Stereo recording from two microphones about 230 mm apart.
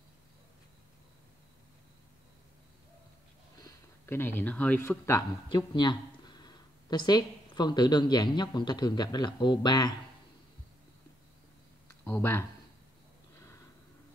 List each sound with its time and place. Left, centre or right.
3.6 s speech: centre
12.0 s speech: centre